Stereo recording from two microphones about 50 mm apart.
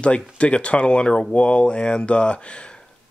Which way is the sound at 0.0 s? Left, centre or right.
Left.